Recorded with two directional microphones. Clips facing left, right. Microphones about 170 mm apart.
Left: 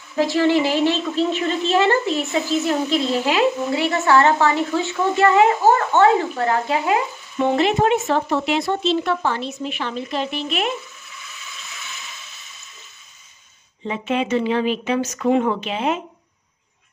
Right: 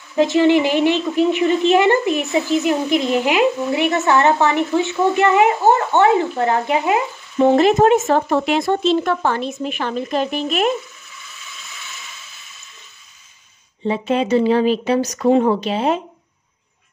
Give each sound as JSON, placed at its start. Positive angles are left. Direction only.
{"t": 0.1, "sound": "a woman's voice", "side_deg": -20}
{"t": 7.3, "sound": "speech", "side_deg": -40}
{"t": 13.8, "sound": "speech", "side_deg": -35}